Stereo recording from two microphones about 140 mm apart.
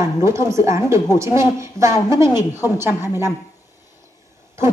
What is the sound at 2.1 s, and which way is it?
A woman's voice, 20° right (ahead or behind).